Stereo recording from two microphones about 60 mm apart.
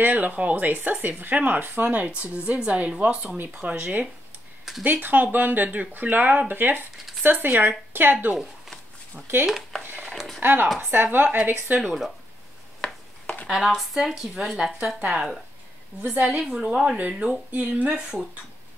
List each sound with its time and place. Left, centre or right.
0.0 s speech: right
4.7 s a sound: centre
5.0 s speech: right
10.1 s a sound: centre
10.4 s speech: right
11.8 s speech: centre
12.8 s a sound: centre
13.5 s speech: centre
17.5 s speech: right